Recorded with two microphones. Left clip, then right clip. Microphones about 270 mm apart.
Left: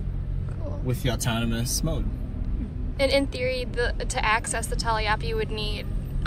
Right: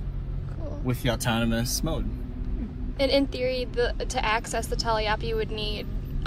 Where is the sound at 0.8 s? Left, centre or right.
Right.